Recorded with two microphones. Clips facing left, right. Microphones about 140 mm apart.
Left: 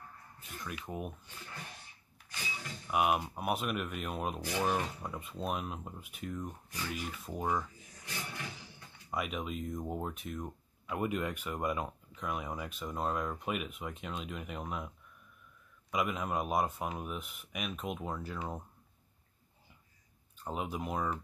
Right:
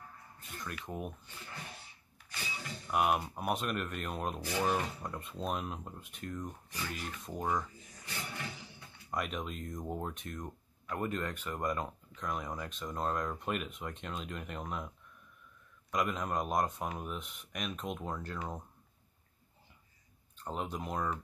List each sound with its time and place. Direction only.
0.4 s speech: 5° left (ahead or behind)
2.9 s speech: 5° left (ahead or behind)
15.9 s speech: 5° left (ahead or behind)
20.3 s speech: 5° left (ahead or behind)